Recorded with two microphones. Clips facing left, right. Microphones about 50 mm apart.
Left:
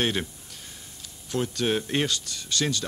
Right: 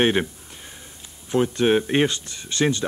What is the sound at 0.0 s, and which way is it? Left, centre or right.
Speech, right.